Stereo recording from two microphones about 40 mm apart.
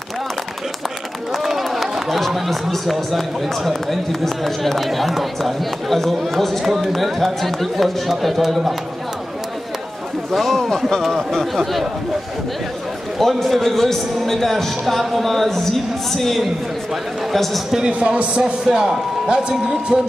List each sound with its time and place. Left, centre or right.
1.3 s speech: centre
6.6 s speech: centre
10.3 s speech: centre
13.2 s a man's voice: centre
17.8 s a man's voice: right